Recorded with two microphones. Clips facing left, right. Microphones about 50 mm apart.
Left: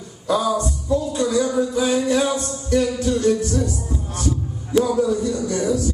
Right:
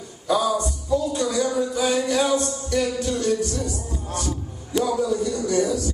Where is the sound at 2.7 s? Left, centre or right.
Left.